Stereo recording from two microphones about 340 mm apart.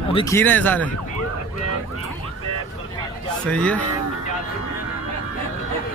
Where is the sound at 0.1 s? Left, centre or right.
Centre.